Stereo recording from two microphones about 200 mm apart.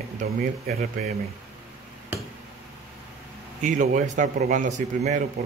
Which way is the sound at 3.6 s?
40° right (ahead or behind).